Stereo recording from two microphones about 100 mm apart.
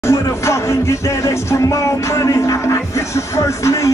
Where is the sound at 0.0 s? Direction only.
30° left (ahead or behind).